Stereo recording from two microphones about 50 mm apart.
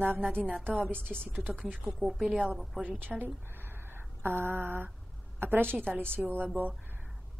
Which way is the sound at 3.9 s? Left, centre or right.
Right.